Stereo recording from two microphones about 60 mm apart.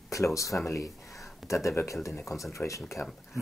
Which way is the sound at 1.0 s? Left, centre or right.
Centre.